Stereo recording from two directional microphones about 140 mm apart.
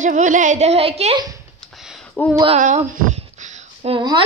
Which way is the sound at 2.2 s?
10° left (ahead or behind).